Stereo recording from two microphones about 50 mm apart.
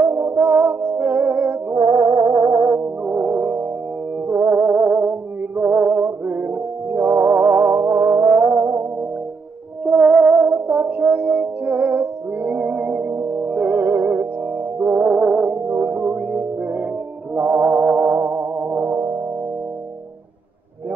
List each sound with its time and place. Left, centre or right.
0.0 s music: right
1.7 s music: right
3.1 s music: right
5.6 s a sound: right
6.2 s music: right
9.8 s music: right
15.0 s music: centre
15.7 s music: right